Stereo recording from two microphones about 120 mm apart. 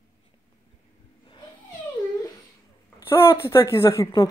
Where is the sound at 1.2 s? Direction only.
35° left (ahead or behind).